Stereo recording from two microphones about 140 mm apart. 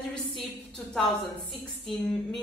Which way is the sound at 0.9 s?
Centre (ahead or behind).